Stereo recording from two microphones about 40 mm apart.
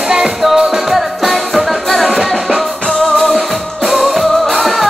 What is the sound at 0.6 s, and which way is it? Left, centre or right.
Music, centre.